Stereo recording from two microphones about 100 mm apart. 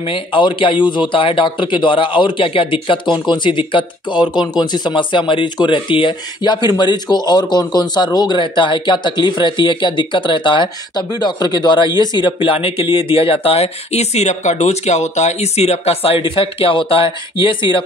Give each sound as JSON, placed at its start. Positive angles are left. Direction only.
{"t": 0.0, "sound": "a man's voice", "side_deg": 60}